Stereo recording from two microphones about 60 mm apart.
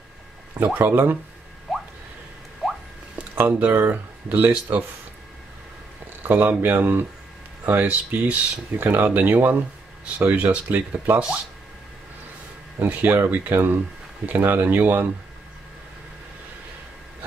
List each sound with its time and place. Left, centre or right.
0.7 s speech: right
1.7 s a sound: centre
3.3 s speech: right
6.2 s speech: right
12.8 s speech: right